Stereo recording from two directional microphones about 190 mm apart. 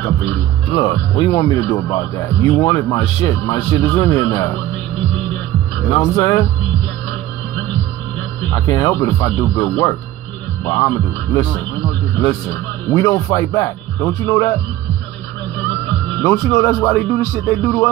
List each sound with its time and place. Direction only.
0.7 s speech: 20° left (ahead or behind)
5.8 s speech: 15° left (ahead or behind)
8.5 s speech: 20° left (ahead or behind)
16.2 s speech: 15° left (ahead or behind)